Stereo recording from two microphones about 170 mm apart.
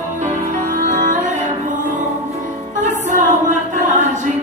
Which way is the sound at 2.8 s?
45° right (ahead or behind).